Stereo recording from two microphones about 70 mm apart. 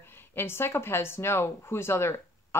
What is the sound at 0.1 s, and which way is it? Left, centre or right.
Speech, left.